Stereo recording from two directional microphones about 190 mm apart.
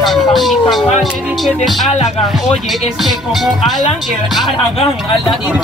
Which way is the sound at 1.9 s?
35° left (ahead or behind).